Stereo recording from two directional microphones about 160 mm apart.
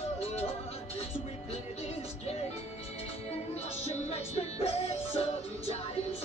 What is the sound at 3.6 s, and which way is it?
Music, 40° left (ahead or behind).